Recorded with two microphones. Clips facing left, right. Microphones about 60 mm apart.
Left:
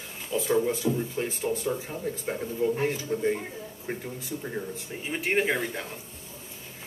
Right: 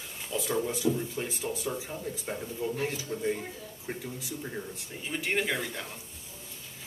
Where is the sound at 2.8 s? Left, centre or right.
Left.